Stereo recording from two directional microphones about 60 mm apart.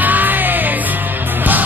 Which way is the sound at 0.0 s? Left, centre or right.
Right.